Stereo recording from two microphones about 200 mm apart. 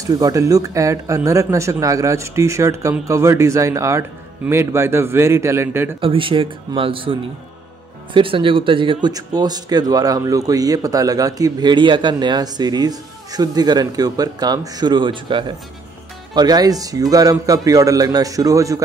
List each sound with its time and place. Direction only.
0.0 s speech: 15° right (ahead or behind)
5.9 s speech: 25° right (ahead or behind)